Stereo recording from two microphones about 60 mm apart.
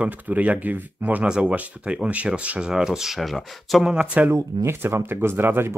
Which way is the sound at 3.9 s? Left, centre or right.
Centre.